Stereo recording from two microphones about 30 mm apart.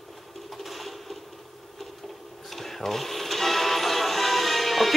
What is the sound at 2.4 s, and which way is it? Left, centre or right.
Music, centre.